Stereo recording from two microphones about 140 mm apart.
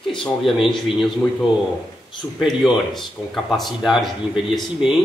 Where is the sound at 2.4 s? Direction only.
Centre (ahead or behind).